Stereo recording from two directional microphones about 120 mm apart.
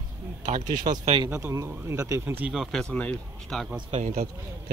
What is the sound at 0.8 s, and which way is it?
Speech, 90° right.